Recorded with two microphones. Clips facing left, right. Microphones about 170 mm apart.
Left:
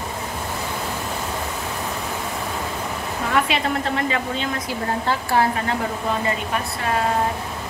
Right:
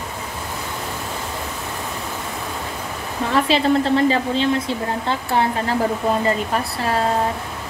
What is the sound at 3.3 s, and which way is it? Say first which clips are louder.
A woman's voice: right 5 dB; 30° right (ahead or behind).